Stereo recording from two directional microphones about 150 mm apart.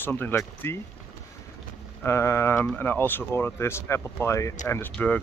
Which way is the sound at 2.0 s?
15° left (ahead or behind).